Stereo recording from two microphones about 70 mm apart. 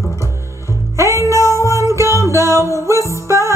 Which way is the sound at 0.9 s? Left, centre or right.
Right.